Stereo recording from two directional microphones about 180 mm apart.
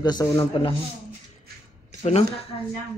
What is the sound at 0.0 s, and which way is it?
Speech, 25° left (ahead or behind).